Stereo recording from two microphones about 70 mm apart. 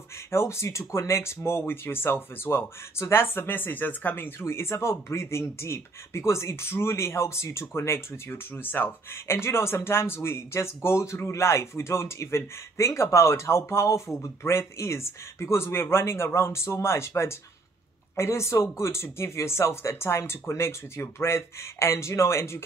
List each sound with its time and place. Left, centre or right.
0.3 s speech: left